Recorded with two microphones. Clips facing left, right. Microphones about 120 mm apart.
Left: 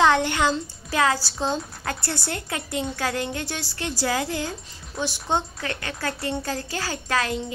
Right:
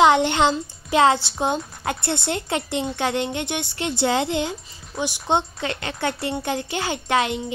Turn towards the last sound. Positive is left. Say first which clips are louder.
# right 4 dB
turn(degrees=-20)  # may be behind; listen again after turning